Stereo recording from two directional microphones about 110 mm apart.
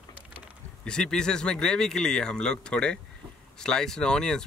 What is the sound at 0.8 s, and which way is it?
Speech, 5° left (ahead or behind).